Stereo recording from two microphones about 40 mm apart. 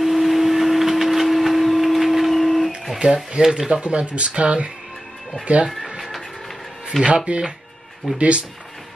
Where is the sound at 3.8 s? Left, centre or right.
Right.